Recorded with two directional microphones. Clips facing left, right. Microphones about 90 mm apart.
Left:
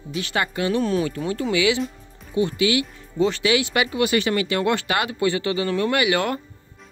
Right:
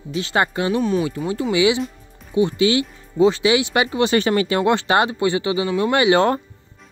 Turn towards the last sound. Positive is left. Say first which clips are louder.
# right 5 dB
turn(degrees=-30)  # may be behind; listen again after turning